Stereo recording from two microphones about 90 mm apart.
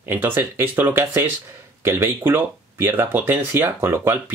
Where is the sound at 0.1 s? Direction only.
25° right (ahead or behind).